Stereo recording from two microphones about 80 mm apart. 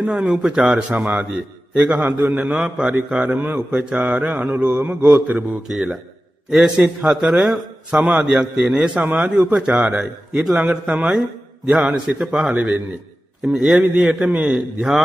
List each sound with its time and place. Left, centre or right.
0.0 s a man's voice: centre
2.0 s a man's voice: centre
4.8 s a man's voice: centre
5.1 s a man's voice: centre
5.7 s a man's voice: centre
8.0 s a man's voice: right
8.3 s a man's voice: centre
11.8 s a man's voice: centre